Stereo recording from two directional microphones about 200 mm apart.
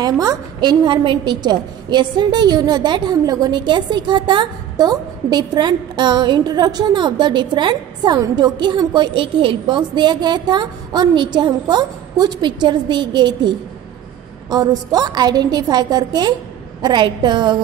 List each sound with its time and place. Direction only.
0.0 s a woman's voice: 20° right (ahead or behind)